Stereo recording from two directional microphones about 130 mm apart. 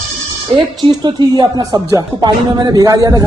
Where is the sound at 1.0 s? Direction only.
30° right (ahead or behind).